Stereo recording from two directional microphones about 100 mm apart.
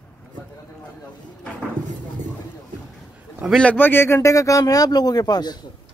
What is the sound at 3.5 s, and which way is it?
Speech, 5° left (ahead or behind).